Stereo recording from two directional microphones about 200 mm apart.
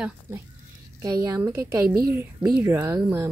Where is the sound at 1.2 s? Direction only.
15° right (ahead or behind).